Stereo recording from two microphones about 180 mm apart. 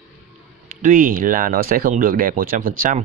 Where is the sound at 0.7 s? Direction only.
50° right (ahead or behind).